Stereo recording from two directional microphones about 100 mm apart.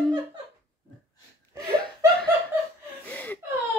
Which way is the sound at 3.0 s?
15° left (ahead or behind).